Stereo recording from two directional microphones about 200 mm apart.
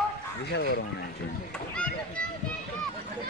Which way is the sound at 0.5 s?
50° left (ahead or behind).